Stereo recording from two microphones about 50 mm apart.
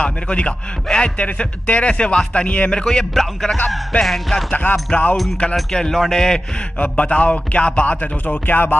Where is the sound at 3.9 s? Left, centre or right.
Left.